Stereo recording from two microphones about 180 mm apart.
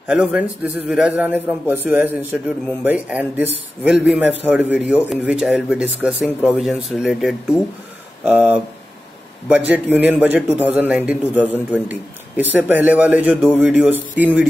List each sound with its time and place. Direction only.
0.1 s a man's voice: 5° right (ahead or behind)
9.7 s a man's voice: 10° right (ahead or behind)